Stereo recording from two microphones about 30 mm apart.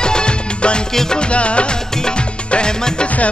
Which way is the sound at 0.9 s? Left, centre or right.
Centre.